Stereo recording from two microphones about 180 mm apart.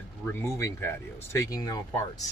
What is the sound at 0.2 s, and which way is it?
Speech, 15° left (ahead or behind).